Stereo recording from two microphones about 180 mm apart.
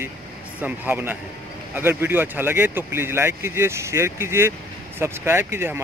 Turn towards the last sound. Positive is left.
turn(degrees=-15)  # may be behind; listen again after turning